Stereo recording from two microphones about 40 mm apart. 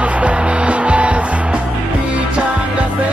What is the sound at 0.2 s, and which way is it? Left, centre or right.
Music, right.